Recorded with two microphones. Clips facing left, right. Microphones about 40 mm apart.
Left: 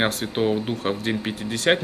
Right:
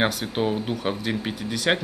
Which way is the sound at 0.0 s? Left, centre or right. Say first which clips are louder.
Left 1 dB; centre.